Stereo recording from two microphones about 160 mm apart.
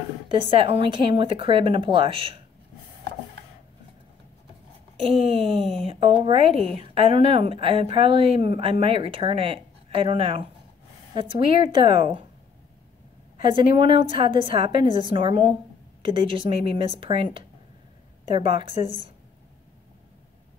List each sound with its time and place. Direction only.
0.3 s a woman's voice: 35° right (ahead or behind)
5.1 s a woman's voice: 35° right (ahead or behind)
13.5 s a woman's voice: 30° right (ahead or behind)